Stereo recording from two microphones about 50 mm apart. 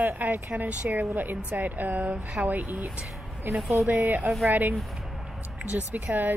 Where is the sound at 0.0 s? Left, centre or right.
Right.